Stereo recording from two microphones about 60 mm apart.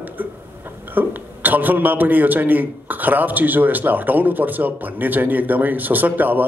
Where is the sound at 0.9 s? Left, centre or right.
Right.